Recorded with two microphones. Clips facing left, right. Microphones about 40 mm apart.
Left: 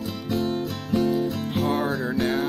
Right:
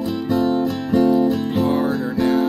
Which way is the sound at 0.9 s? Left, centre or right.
Centre.